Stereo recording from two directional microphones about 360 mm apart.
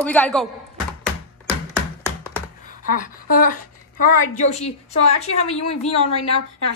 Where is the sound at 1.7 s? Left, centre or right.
Centre.